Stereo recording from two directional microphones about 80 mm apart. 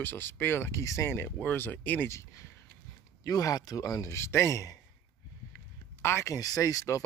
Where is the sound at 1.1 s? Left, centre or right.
Left.